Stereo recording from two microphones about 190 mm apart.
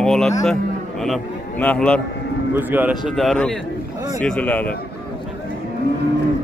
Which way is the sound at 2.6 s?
10° right (ahead or behind).